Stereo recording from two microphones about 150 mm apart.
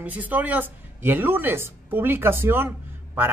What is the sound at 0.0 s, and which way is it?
Speech, 10° right (ahead or behind).